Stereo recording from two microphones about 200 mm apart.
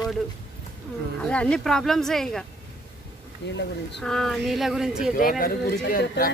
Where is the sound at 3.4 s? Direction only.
60° left (ahead or behind).